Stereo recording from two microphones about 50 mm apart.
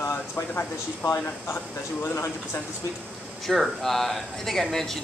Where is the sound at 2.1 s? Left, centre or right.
Left.